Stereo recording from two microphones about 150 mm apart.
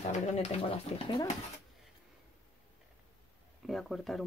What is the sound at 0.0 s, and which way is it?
Speech, 45° left (ahead or behind).